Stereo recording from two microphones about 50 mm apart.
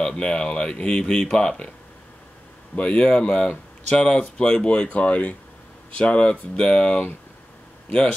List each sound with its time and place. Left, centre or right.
0.0 s speech: centre
2.7 s speech: left